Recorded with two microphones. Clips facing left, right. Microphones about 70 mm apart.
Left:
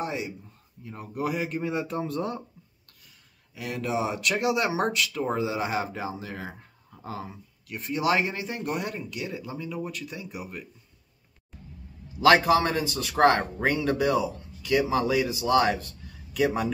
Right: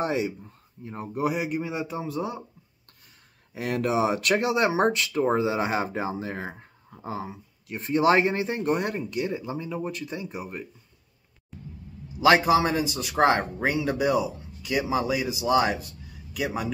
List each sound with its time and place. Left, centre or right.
0.0 s speech: right
0.8 s speech: right; by 2.4 s centre
3.5 s speech: right
4.4 s speech: right
6.9 s speech: right
9.3 s speech: right
11.5 s vehicle: centre
12.2 s speech: centre
16.3 s speech: centre